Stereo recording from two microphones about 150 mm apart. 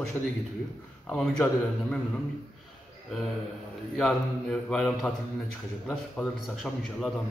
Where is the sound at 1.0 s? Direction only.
5° left (ahead or behind).